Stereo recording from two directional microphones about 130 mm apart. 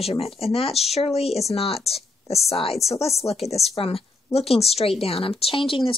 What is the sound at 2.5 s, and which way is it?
A woman's voice, 50° left (ahead or behind).